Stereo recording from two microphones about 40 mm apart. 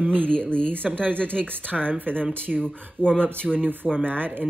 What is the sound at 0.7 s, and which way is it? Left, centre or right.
Speech, right.